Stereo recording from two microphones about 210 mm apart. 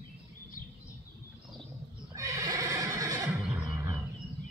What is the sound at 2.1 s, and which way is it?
Neigh, 15° right (ahead or behind).